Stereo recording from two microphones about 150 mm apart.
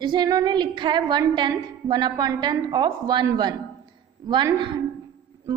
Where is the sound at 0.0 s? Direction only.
30° right (ahead or behind).